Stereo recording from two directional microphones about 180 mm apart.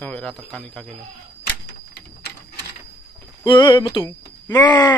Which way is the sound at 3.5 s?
25° left (ahead or behind).